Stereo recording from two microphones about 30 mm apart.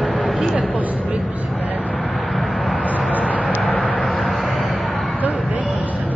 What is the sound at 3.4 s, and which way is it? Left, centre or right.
Vehicle, centre.